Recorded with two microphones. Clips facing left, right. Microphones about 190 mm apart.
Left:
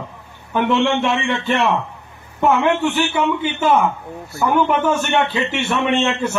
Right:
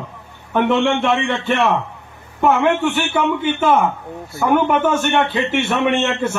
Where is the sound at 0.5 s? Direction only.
55° right (ahead or behind).